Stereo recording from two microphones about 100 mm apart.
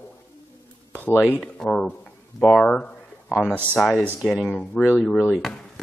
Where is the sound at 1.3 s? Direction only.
5° left (ahead or behind).